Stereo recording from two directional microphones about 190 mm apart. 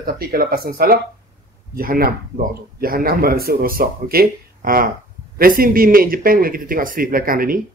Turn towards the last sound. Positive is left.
turn(degrees=-50)  # may be behind; listen again after turning